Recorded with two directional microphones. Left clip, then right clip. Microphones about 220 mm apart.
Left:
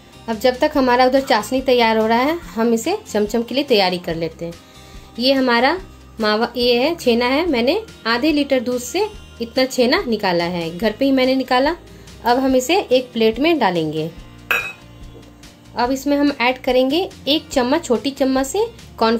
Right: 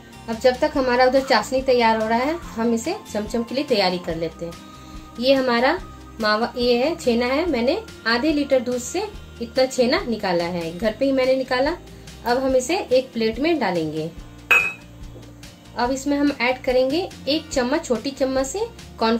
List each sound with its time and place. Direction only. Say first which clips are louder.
0.3 s speech: left 2 dB; 35° left (ahead or behind)
15.7 s speech: left 4 dB; 30° left (ahead or behind)